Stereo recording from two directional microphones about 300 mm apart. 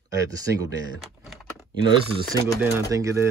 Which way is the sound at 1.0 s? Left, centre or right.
Centre.